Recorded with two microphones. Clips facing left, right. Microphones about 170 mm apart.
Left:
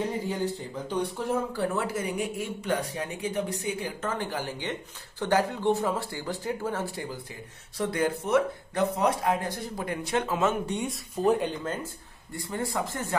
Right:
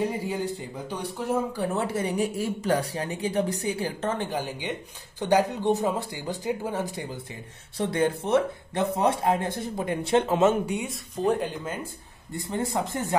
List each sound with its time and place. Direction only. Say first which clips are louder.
0.3 s speech: even; 10° right (ahead or behind)
1.8 s speech: right 3 dB; 30° right (ahead or behind)
10.6 s speech: right 1 dB; 10° right (ahead or behind)
12.3 s speech: right 3 dB; 20° right (ahead or behind)